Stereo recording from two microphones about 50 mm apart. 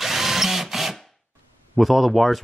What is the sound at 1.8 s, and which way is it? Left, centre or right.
Speech, centre.